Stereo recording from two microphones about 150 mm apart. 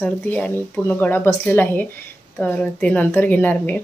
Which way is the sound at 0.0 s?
5° left (ahead or behind).